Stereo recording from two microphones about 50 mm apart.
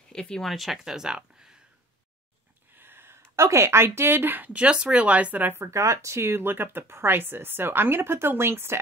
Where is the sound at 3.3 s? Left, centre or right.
Right.